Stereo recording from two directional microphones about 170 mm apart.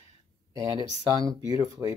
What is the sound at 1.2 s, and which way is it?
Speech, 20° right (ahead or behind).